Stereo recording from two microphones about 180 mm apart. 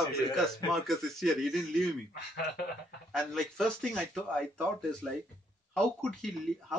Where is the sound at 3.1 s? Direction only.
Centre (ahead or behind).